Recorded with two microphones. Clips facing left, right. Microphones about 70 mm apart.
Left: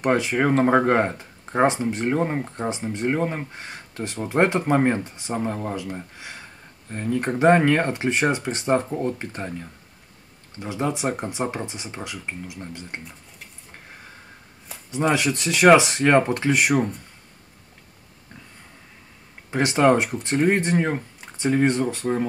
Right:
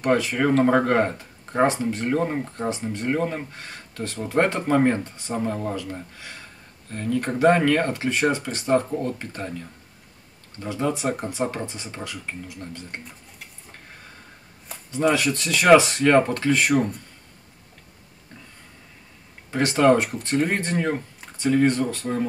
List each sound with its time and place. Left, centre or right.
0.0 s speech: left
15.1 s speech: left
19.5 s speech: centre
20.3 s speech: centre
20.6 s speech: centre